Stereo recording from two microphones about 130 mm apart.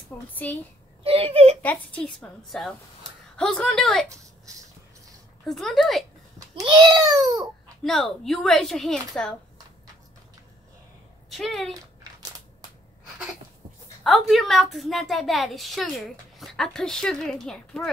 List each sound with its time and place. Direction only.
0.3 s a woman's voice: 15° left (ahead or behind)
1.0 s a child's voice: 45° right (ahead or behind)
1.6 s a woman's voice: 10° left (ahead or behind)
5.5 s a woman's voice: centre (ahead or behind)
6.5 s a child's voice: 35° right (ahead or behind)
7.8 s a woman's voice: centre (ahead or behind)
11.2 s speech: centre (ahead or behind)
14.0 s a woman's voice: centre (ahead or behind)